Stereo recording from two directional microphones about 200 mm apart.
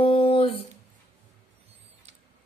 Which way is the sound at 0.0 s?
30° left (ahead or behind).